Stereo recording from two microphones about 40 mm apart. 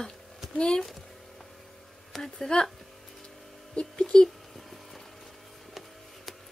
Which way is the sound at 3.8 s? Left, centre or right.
Left.